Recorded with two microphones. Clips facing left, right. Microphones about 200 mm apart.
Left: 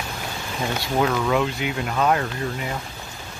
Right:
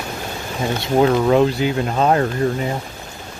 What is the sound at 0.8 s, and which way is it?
Speech, 35° right (ahead or behind).